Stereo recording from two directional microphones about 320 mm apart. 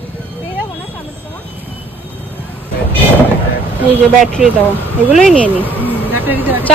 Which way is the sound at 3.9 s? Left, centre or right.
Centre.